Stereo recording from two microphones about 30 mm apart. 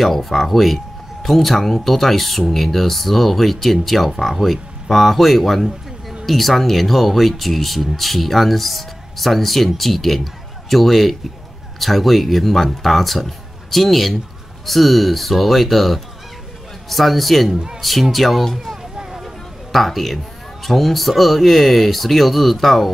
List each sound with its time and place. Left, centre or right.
0.0 s speech: centre
18.9 s vehicle: centre
19.2 s music: centre
20.6 s speech: centre